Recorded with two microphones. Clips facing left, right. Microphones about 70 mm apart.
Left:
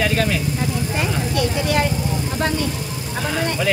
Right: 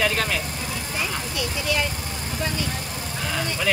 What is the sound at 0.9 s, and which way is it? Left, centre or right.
Vehicle, left.